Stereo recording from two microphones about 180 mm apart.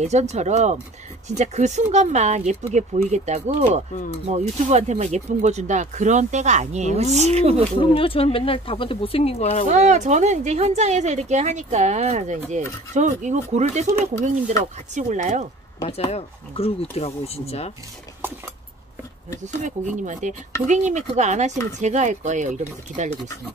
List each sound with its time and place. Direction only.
0.0 s speech: 40° right (ahead or behind)
7.8 s speech: 30° left (ahead or behind)
9.7 s speech: 40° right (ahead or behind)
15.0 s speech: 40° right (ahead or behind)
15.8 s speech: 35° left (ahead or behind)
19.4 s speech: 45° right (ahead or behind)